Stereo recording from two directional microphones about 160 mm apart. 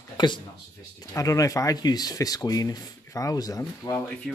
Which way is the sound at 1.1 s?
20° left (ahead or behind).